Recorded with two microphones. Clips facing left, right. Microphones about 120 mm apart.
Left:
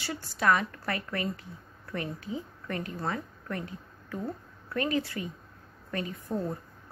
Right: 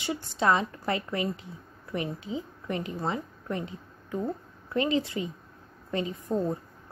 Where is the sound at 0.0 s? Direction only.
20° right (ahead or behind).